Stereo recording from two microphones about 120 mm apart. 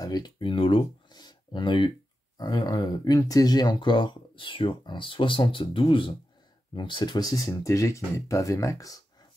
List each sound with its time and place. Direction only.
0.0 s speech: 35° left (ahead or behind)
1.1 s a sound: 35° left (ahead or behind)
2.3 s speech: 35° left (ahead or behind)